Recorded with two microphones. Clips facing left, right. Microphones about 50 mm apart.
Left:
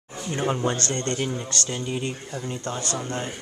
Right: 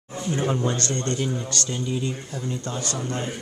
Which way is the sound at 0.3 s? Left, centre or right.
Centre.